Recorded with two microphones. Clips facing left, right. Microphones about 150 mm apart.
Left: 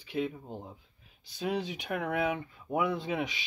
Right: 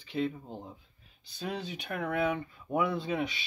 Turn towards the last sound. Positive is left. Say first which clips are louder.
# right 1 dB
turn(degrees=15)  # may be behind; listen again after turning